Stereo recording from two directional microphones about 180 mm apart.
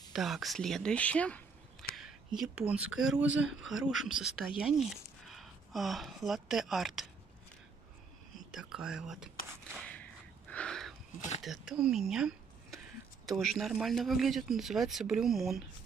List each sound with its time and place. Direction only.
0.1 s speech: centre (ahead or behind)
8.5 s speech: 5° right (ahead or behind)
9.8 s whip: 10° left (ahead or behind)
10.5 s a sound: 5° left (ahead or behind)
11.1 s speech: 40° left (ahead or behind)
11.4 s speech: centre (ahead or behind)